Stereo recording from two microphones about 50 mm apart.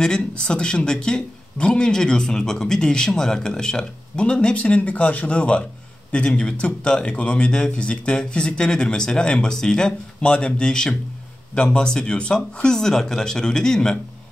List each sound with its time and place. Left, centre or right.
0.0 s speech: centre